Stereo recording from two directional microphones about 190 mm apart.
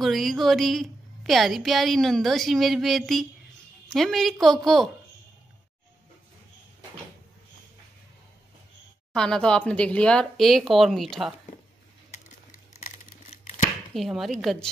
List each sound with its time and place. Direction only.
0.0 s a woman's voice: centre (ahead or behind)
9.1 s a woman's voice: 5° left (ahead or behind)
12.1 s scissors: 40° left (ahead or behind)
13.9 s a woman's voice: centre (ahead or behind)